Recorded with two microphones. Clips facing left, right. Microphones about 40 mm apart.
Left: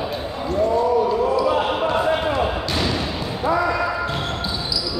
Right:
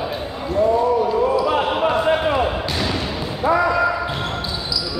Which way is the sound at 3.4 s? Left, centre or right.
Right.